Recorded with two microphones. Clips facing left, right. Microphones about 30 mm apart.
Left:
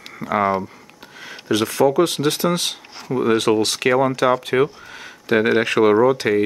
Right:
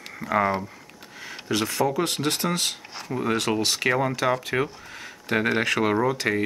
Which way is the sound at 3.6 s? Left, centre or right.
Left.